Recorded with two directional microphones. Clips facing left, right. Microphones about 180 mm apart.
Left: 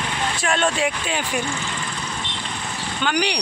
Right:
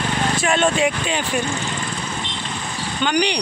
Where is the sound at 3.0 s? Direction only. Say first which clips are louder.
Right 3 dB; 5° left (ahead or behind).